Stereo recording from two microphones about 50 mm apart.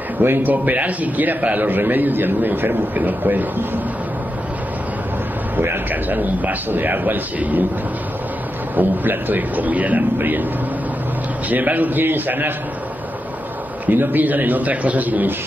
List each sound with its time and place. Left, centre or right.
0.2 s a man's voice: right
5.9 s a man's voice: right
8.7 s a man's voice: right
11.4 s a man's voice: right
13.8 s a man's voice: right